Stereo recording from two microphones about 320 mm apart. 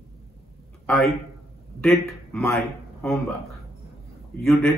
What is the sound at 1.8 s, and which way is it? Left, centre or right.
Speech, centre.